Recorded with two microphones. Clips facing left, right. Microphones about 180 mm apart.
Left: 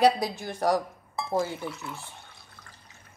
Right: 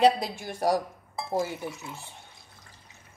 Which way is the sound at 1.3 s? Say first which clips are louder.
Left 1 dB; 15° right (ahead or behind).